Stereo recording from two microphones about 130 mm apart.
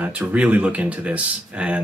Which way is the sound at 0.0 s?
10° right (ahead or behind).